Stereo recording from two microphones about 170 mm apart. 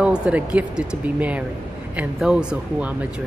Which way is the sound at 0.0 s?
5° right (ahead or behind).